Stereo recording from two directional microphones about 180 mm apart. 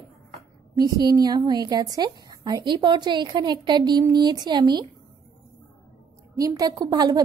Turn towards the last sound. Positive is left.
turn(degrees=-20)  # may be behind; listen again after turning